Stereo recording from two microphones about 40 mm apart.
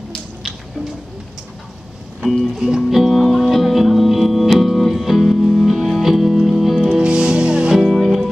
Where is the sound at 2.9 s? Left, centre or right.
Centre.